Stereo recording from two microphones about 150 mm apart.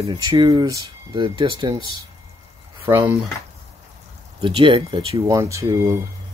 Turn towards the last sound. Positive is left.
turn(degrees=-20)  # may be behind; listen again after turning